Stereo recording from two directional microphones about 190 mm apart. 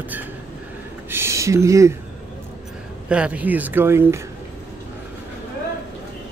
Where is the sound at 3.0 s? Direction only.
5° right (ahead or behind).